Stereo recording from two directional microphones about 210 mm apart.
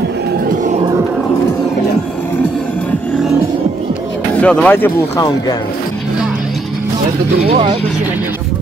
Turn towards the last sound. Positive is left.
turn(degrees=-25)  # may be behind; listen again after turning